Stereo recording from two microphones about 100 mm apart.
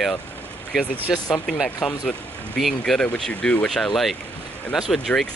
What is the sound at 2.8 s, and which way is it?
Speech, 10° left (ahead or behind).